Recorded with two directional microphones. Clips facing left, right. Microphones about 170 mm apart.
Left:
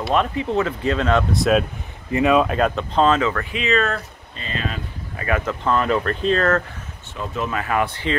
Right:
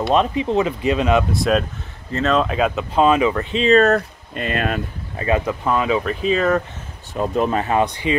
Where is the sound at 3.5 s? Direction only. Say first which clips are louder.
Right 11 dB; 35° right (ahead or behind).